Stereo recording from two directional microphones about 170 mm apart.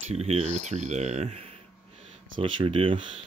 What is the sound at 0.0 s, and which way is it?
Speech, 40° right (ahead or behind).